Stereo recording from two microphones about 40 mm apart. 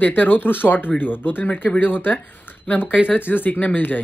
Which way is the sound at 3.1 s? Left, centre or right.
Left.